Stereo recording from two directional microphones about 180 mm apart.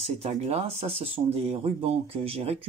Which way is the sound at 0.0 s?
35° right (ahead or behind).